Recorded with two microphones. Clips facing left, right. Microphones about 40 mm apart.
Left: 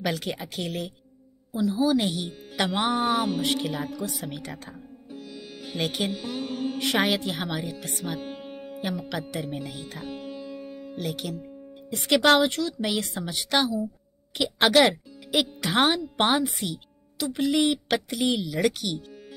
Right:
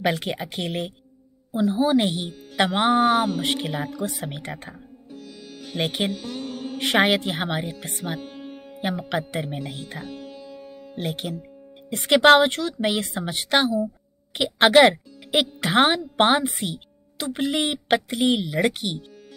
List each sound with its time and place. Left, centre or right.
0.0 s a woman's voice: right
2.9 s a sound: centre
3.4 s a woman's voice: right
5.1 s music: centre
5.8 s a woman's voice: right
6.1 s music: centre
6.8 s a woman's voice: right
8.2 s music: centre
8.7 s speech: right
10.0 s music: centre
11.0 s speech: right